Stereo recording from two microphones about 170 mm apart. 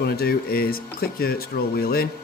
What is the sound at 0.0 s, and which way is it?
Speech, 65° left (ahead or behind).